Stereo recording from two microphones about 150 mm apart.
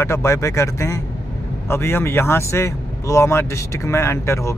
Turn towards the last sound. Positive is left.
turn(degrees=20)  # may be behind; listen again after turning